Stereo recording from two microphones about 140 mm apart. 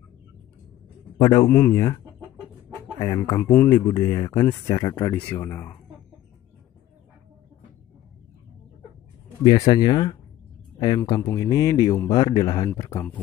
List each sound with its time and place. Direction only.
1.2 s speech: 30° left (ahead or behind)
1.5 s speech: 15° left (ahead or behind)
3.0 s speech: 25° left (ahead or behind)
5.1 s speech: 15° left (ahead or behind)
9.5 s speech: 30° left (ahead or behind)